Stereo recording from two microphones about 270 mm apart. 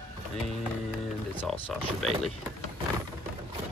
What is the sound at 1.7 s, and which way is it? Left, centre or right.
Speech, centre.